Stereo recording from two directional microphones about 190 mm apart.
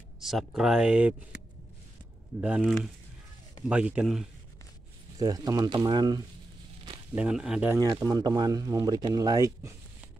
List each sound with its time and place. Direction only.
0.2 s speech: centre (ahead or behind)
2.4 s speech: 5° right (ahead or behind)
5.2 s speech: 20° right (ahead or behind)
7.2 s speech: 5° right (ahead or behind)